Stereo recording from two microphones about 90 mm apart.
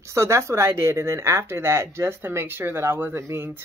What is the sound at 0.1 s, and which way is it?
Speech, 30° right (ahead or behind).